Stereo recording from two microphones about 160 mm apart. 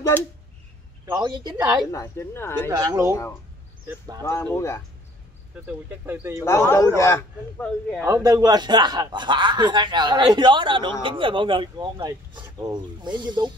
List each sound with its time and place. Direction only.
0.1 s speech: 10° left (ahead or behind)
1.0 s a man's voice: 25° right (ahead or behind)
1.9 s speech: 20° left (ahead or behind)
2.7 s a man's voice: 20° right (ahead or behind)
4.2 s speech: 15° left (ahead or behind)
5.7 s speech: 10° right (ahead or behind)
6.4 s speech: 15° left (ahead or behind)
8.0 s a man's voice: 20° right (ahead or behind)